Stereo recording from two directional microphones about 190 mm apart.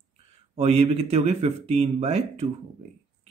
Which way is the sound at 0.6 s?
35° right (ahead or behind).